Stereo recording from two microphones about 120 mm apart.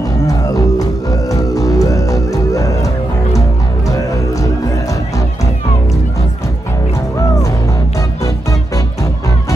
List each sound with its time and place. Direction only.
0.3 s music: 30° left (ahead or behind)
8.2 s music: 25° left (ahead or behind)